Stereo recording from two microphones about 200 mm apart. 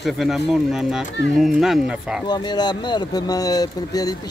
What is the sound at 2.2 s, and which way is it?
Speech, 20° left (ahead or behind).